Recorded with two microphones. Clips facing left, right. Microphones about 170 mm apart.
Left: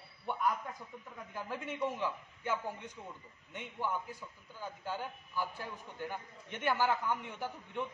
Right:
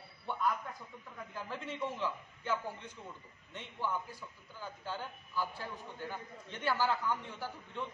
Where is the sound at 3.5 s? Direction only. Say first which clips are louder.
Left 1 dB; 15° left (ahead or behind).